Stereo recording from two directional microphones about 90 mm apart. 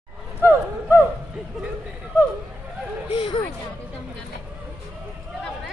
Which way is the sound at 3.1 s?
70° left (ahead or behind).